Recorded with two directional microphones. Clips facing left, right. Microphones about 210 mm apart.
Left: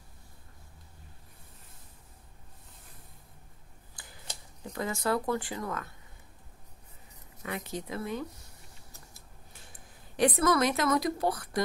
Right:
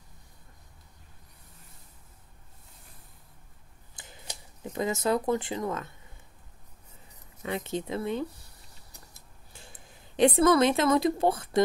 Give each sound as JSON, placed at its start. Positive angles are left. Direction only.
{"t": 3.9, "sound": "a sound", "side_deg": -20}
{"t": 4.7, "sound": "speech", "side_deg": -20}
{"t": 7.4, "sound": "speech", "side_deg": -25}
{"t": 9.5, "sound": "a woman's voice", "side_deg": -25}